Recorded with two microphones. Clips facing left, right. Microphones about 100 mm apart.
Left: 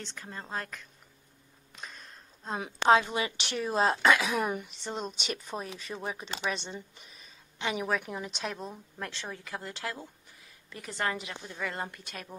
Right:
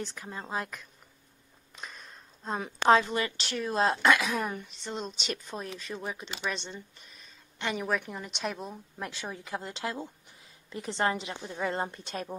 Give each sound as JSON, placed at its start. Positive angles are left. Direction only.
{"t": 0.0, "sound": "a woman's voice", "side_deg": -10}
{"t": 4.3, "sound": "a woman's voice", "side_deg": 15}
{"t": 9.0, "sound": "speech", "side_deg": -15}